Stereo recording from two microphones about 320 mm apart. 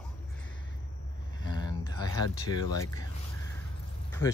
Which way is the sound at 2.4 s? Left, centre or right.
Centre.